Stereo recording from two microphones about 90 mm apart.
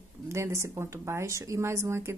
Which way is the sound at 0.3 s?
30° right (ahead or behind).